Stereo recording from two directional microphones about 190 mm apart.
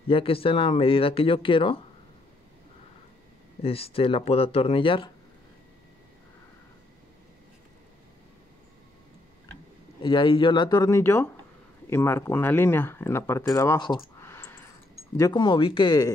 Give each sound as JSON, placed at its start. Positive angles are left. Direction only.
{"t": 0.1, "sound": "speech", "side_deg": 30}
{"t": 3.6, "sound": "speech", "side_deg": 30}
{"t": 10.0, "sound": "speech", "side_deg": 25}
{"t": 14.2, "sound": "a sound", "side_deg": 10}
{"t": 15.1, "sound": "speech", "side_deg": 20}